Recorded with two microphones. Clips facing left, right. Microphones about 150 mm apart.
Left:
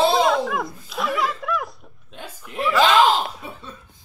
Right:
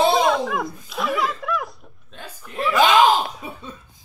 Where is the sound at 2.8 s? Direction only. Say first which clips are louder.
Right 1 dB; 15° right (ahead or behind).